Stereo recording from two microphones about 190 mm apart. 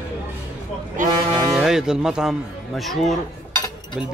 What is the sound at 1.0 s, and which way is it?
Music, 45° right (ahead or behind).